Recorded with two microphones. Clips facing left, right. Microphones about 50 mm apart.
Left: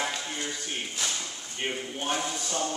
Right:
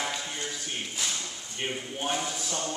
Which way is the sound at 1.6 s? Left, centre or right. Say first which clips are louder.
Left 1 dB; centre.